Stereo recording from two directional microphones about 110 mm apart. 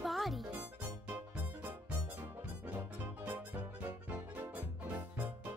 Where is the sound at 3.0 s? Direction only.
15° right (ahead or behind).